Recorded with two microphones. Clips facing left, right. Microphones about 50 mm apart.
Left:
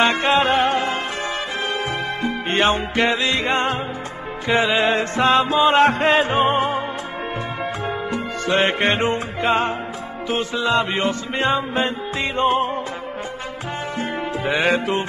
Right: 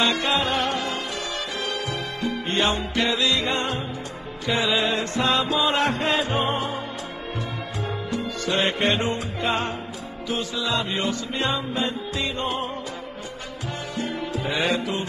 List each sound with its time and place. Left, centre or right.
0.0 s music: left
2.2 s music: left
8.1 s music: left
13.9 s music: left